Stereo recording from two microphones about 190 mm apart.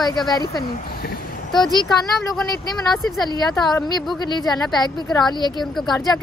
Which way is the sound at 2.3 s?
Centre (ahead or behind).